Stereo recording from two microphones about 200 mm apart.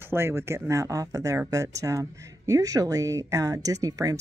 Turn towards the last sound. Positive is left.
turn(degrees=-20)  # may be behind; listen again after turning